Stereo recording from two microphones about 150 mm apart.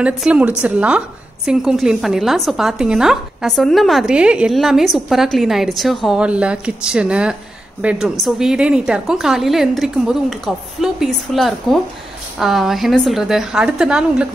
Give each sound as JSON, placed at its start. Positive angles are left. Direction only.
{"t": 0.0, "sound": "a woman's voice", "side_deg": -10}